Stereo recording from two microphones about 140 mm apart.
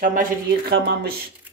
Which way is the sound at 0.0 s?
80° right.